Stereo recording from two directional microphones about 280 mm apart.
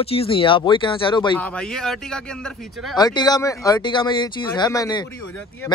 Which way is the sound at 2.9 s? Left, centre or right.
Centre.